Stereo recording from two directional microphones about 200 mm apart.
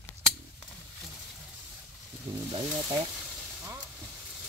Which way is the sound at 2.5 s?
25° right (ahead or behind).